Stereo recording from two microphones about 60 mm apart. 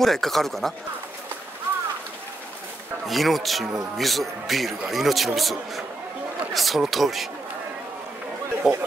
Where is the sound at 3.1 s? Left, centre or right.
Centre.